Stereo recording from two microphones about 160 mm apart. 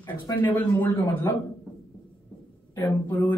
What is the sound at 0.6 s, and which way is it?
Speech, 10° left (ahead or behind).